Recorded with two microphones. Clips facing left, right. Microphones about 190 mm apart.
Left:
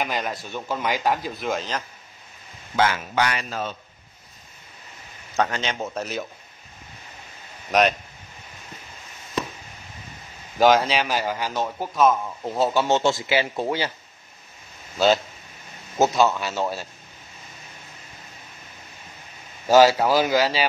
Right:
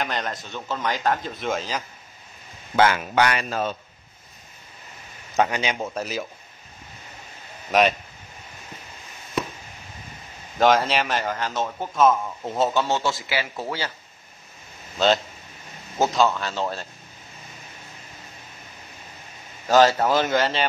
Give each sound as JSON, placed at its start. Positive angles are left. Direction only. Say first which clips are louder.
{"t": 0.0, "sound": "a man's voice", "louder": "left 1 dB", "side_deg": 5}
{"t": 2.7, "sound": "a man's voice", "louder": "right 3 dB", "side_deg": -55}
{"t": 5.3, "sound": "a man's voice", "louder": "right 2 dB", "side_deg": -15}
{"t": 5.8, "sound": "a man's voice", "louder": "even", "side_deg": 0}
{"t": 10.6, "sound": "a man's voice", "louder": "left 1 dB", "side_deg": 0}
{"t": 12.9, "sound": "speech", "louder": "left 4 dB", "side_deg": 25}
{"t": 16.0, "sound": "a man's voice", "louder": "left 1 dB", "side_deg": 10}
{"t": 19.7, "sound": "a man's voice", "louder": "left 2 dB", "side_deg": 5}